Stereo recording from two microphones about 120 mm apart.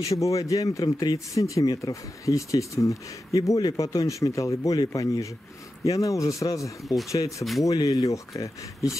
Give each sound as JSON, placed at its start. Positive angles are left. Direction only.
{"t": 0.1, "sound": "speech", "side_deg": 25}